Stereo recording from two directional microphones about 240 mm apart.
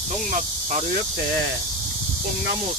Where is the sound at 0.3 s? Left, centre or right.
Right.